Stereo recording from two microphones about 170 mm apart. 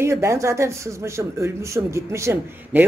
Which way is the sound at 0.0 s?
15° right (ahead or behind).